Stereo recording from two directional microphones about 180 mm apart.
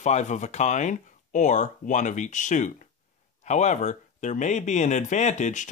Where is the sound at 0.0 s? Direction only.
40° left (ahead or behind).